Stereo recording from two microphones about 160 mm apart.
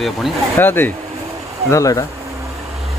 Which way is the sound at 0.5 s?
15° left (ahead or behind).